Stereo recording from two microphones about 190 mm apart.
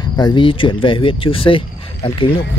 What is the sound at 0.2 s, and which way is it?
Speech, 25° left (ahead or behind).